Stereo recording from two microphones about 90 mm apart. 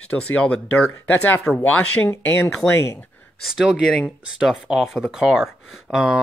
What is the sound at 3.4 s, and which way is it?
Speech, 5° right (ahead or behind).